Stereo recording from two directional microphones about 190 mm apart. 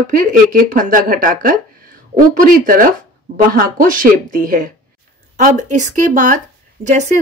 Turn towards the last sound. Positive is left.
turn(degrees=-40)  # may be behind; listen again after turning